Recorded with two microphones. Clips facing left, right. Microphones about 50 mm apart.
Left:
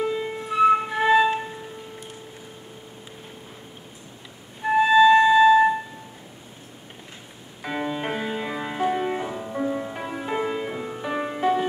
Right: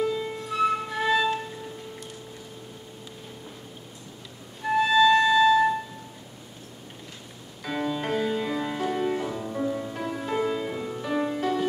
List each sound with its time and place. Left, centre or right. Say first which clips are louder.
0.0 s music: left 1 dB; left
4.6 s music: left 4 dB; left
7.6 s music: left 1 dB; left